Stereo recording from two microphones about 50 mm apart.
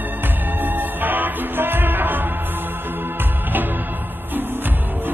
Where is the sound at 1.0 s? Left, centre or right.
Right.